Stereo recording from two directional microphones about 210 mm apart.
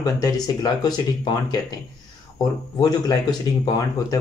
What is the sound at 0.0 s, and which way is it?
Speech, 20° left (ahead or behind).